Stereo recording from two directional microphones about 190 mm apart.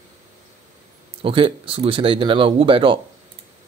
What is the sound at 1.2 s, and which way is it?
Speech, 30° right (ahead or behind).